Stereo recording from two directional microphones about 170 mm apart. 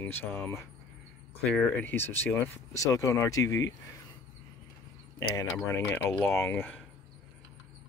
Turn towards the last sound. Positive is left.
turn(degrees=10)  # may be behind; listen again after turning